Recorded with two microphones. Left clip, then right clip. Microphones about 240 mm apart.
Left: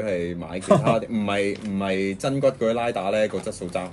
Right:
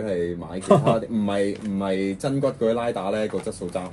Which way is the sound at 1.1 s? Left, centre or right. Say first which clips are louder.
Even; left.